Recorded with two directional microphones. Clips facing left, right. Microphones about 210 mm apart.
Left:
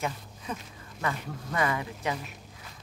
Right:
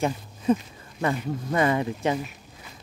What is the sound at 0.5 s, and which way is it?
Speech, 25° right (ahead or behind).